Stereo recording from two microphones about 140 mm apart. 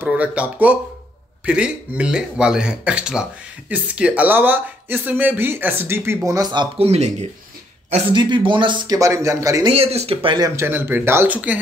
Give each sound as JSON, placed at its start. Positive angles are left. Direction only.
{"t": 0.0, "sound": "speech", "side_deg": -10}
{"t": 6.8, "sound": "speech", "side_deg": -50}
{"t": 8.1, "sound": "speech", "side_deg": -35}
{"t": 8.9, "sound": "speech", "side_deg": -20}
{"t": 9.7, "sound": "speech", "side_deg": -45}
{"t": 10.3, "sound": "speech", "side_deg": -25}